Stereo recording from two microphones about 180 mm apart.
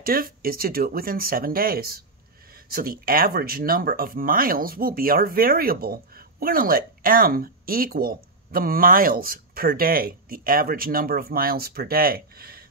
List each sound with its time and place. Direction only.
0.0 s speech: 55° right (ahead or behind)